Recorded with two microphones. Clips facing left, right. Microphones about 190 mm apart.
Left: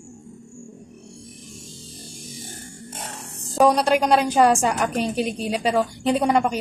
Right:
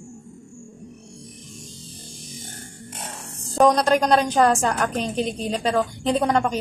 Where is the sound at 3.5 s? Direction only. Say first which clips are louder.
Even; 10° left (ahead or behind).